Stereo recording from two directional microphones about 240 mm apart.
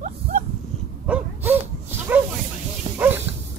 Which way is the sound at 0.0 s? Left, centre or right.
Right.